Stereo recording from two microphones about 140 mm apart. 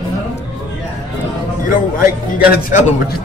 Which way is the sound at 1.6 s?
80° left.